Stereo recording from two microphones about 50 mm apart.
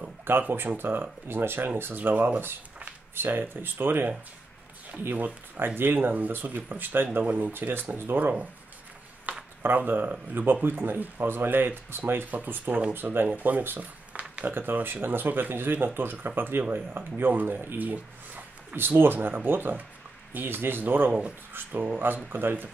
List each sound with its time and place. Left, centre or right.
0.2 s speech: right
9.3 s a sound: right
9.8 s speech: right
14.5 s speech: right
18.8 s speech: right